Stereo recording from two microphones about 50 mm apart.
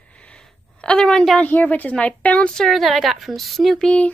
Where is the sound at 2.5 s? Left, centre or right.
Centre.